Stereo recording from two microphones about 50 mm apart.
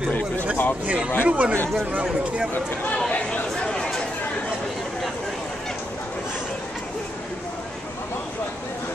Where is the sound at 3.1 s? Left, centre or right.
Left.